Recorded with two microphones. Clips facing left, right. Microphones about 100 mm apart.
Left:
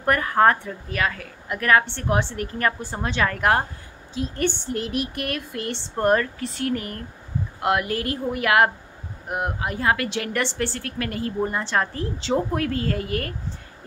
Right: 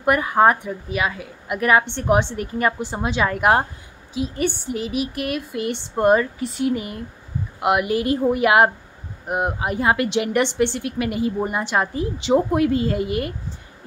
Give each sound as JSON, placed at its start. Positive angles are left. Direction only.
{"t": 0.0, "sound": "a woman's voice", "side_deg": -10}